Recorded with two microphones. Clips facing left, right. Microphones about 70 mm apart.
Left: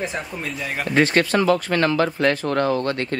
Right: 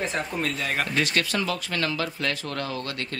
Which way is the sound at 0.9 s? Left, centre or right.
Left.